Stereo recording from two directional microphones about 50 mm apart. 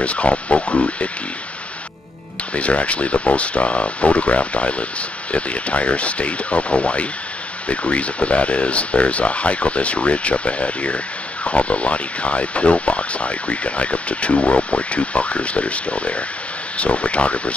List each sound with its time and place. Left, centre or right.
0.0 s speech: left
2.5 s speech: left